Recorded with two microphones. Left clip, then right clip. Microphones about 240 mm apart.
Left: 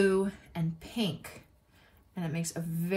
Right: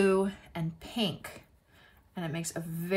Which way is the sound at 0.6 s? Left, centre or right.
Centre.